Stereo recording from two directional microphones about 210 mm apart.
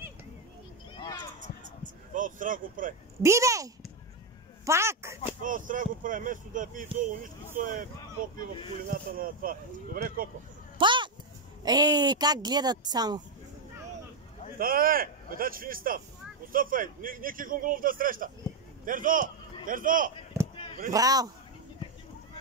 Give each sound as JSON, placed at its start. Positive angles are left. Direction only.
{"t": 0.9, "sound": "a sound", "side_deg": 20}
{"t": 1.8, "sound": "a sound", "side_deg": -40}
{"t": 3.2, "sound": "speech", "side_deg": -15}
{"t": 5.4, "sound": "a man's voice", "side_deg": -40}
{"t": 8.8, "sound": "speech", "side_deg": -40}
{"t": 10.8, "sound": "a sound", "side_deg": -20}
{"t": 11.6, "sound": "speech", "side_deg": -20}
{"t": 14.6, "sound": "a man's voice", "side_deg": -45}
{"t": 20.9, "sound": "speech", "side_deg": -15}